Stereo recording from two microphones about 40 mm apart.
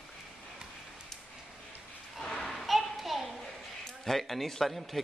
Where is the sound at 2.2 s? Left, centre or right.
Centre.